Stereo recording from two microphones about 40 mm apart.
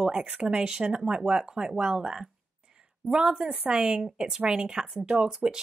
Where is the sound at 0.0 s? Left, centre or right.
Centre.